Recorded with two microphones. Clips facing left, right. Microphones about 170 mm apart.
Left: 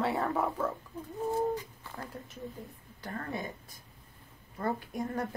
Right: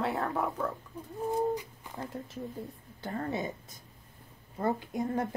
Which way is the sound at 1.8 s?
20° right (ahead or behind).